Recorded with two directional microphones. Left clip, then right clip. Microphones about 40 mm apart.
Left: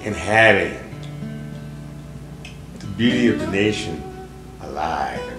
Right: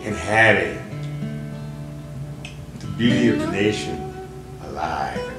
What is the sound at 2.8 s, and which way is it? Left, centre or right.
Speech, left.